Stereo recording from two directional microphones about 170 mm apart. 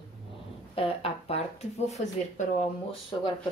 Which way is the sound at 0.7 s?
35° left (ahead or behind).